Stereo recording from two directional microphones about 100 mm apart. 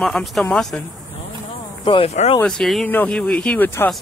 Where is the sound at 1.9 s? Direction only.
60° left (ahead or behind).